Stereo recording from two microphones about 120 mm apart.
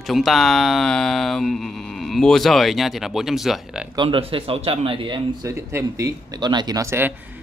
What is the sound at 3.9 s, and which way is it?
A man's voice, 45° right (ahead or behind).